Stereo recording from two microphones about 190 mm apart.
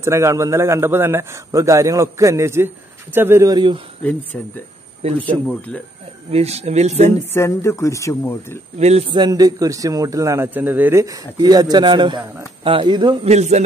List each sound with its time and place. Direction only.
0.0 s a man's voice: 15° right (ahead or behind)
4.0 s speech: 10° left (ahead or behind)
5.0 s speech: 30° right (ahead or behind)
6.3 s speech: 35° right (ahead or behind)
7.1 s speech: 15° left (ahead or behind)
8.7 s speech: 35° right (ahead or behind)
13.3 s speech: 35° right (ahead or behind)